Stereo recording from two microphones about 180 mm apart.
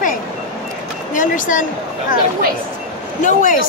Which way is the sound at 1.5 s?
45° left (ahead or behind).